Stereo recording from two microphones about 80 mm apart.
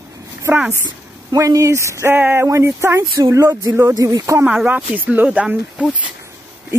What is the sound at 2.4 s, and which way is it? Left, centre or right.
Speech, right.